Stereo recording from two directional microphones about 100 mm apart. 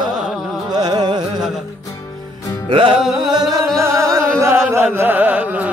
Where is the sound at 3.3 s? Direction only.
35° right (ahead or behind).